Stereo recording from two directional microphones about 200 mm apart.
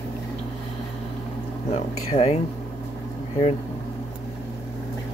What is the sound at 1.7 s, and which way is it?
Speech, 35° left (ahead or behind).